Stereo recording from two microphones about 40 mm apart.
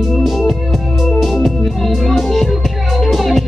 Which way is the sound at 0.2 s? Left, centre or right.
Centre.